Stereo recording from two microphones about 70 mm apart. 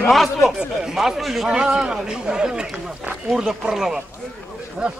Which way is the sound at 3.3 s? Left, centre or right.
Centre.